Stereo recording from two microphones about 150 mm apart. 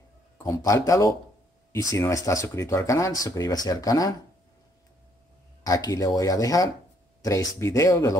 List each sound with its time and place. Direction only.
0.4 s speech: 20° left (ahead or behind)
5.6 s speech: 25° left (ahead or behind)